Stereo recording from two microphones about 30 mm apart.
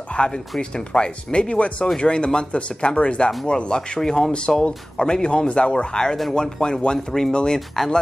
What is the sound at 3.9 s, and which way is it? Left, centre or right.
Speech, centre.